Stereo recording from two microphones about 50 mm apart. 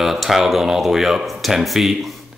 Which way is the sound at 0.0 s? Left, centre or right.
Centre.